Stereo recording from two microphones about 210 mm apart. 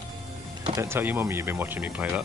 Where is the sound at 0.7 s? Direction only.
10° right (ahead or behind).